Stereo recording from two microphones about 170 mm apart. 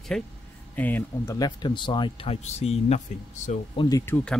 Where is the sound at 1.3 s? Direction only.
25° left (ahead or behind); by 3.0 s 40° left (ahead or behind).